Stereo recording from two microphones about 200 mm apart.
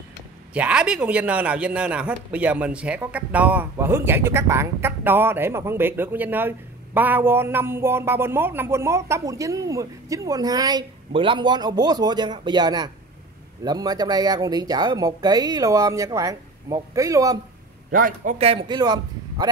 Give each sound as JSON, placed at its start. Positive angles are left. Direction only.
{"t": 0.6, "sound": "a man's voice", "side_deg": -5}
{"t": 17.9, "sound": "a man's voice", "side_deg": -45}
{"t": 18.4, "sound": "speech", "side_deg": -25}